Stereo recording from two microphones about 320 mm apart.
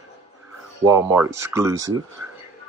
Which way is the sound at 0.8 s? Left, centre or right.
Centre.